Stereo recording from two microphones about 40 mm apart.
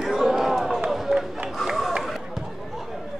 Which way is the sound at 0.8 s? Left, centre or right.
Centre.